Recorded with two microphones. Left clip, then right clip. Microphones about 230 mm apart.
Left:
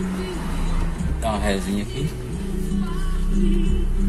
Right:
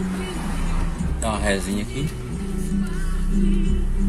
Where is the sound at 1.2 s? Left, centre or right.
Centre.